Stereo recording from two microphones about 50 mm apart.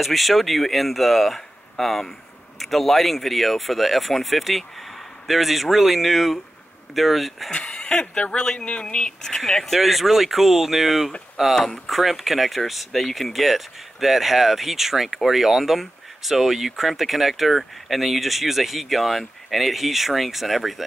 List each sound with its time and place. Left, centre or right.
0.0 s speech: centre
7.5 s speech: centre
9.4 s speech: centre